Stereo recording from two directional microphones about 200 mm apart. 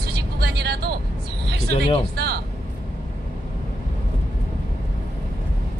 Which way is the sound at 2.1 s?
55° right (ahead or behind).